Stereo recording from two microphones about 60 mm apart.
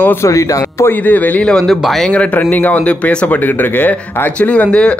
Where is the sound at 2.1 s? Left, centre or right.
Left.